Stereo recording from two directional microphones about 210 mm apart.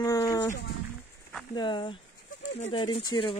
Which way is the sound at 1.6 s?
20° left (ahead or behind).